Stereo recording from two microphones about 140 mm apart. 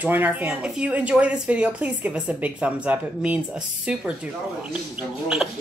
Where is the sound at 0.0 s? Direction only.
15° right (ahead or behind).